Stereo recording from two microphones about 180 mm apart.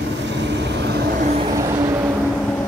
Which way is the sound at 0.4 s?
80° right.